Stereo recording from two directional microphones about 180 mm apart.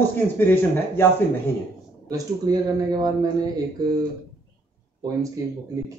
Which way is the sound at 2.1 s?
20° right (ahead or behind).